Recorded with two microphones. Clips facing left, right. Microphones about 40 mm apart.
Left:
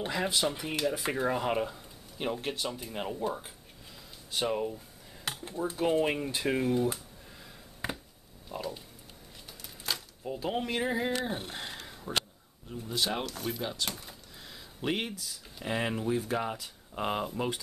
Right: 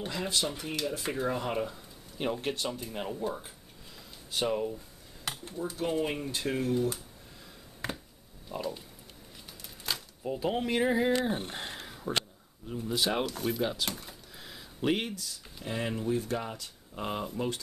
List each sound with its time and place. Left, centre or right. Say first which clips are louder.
0.0 s speech: left 2 dB; centre
2.1 s speech: right 1 dB; centre
4.3 s dishes: right 1 dB; centre
5.6 s speech: left 3 dB; centre
7.8 s a sound: left 1 dB; centre
9.8 s speech: right 1 dB; centre
15.6 s speech: left 2 dB; left